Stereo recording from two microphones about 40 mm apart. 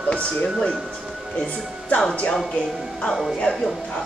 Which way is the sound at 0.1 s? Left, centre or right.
Left.